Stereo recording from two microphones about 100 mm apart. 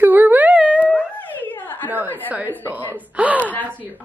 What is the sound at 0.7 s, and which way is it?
Dog, 15° left (ahead or behind).